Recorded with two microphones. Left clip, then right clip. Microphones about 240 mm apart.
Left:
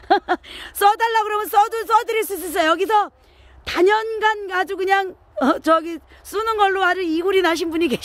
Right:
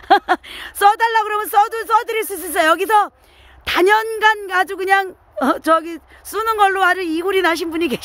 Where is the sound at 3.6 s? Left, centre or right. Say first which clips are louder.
Right 3 dB; centre.